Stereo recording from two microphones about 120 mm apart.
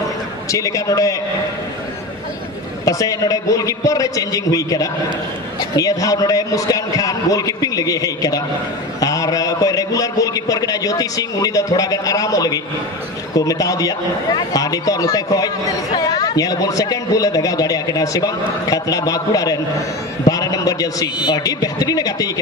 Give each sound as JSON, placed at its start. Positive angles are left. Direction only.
{"t": 0.5, "sound": "a man's voice", "side_deg": 25}
{"t": 2.8, "sound": "a man's voice", "side_deg": 30}